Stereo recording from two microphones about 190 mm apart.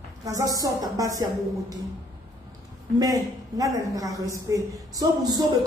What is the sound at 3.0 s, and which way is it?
A man's voice, 20° right (ahead or behind).